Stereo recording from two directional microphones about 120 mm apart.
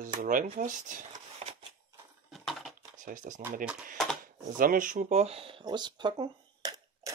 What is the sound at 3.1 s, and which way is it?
Speech, 90° right.